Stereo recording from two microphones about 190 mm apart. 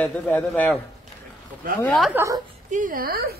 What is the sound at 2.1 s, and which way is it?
Speech, 15° right (ahead or behind).